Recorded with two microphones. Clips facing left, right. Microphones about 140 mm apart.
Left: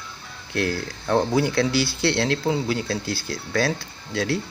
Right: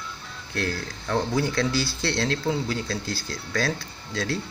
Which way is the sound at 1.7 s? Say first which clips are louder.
Left 4 dB; 70° left (ahead or behind).